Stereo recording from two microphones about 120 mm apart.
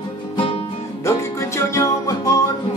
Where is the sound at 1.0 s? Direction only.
20° left (ahead or behind).